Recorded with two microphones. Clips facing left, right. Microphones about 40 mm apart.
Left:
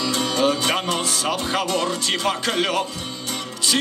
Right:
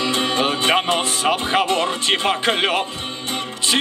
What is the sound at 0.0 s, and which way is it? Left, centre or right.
Music, right.